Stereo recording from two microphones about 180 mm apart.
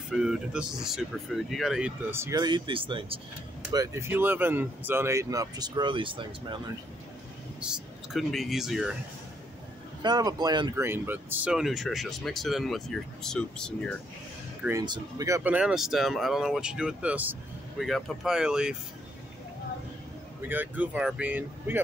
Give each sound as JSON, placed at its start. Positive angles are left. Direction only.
{"t": 0.1, "sound": "speech", "side_deg": -5}
{"t": 2.0, "sound": "speech", "side_deg": -15}
{"t": 3.7, "sound": "speech", "side_deg": -15}
{"t": 7.6, "sound": "speech", "side_deg": 0}
{"t": 10.0, "sound": "speech", "side_deg": -25}
{"t": 10.8, "sound": "speech", "side_deg": -10}
{"t": 14.6, "sound": "speech", "side_deg": -15}
{"t": 20.4, "sound": "speech", "side_deg": -10}